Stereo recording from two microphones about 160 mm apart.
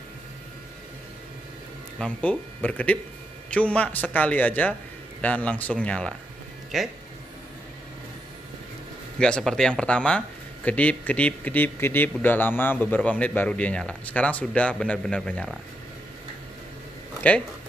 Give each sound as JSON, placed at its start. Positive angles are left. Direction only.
{"t": 2.0, "sound": "speech", "side_deg": 5}
{"t": 9.2, "sound": "speech", "side_deg": 5}
{"t": 17.2, "sound": "speech", "side_deg": 10}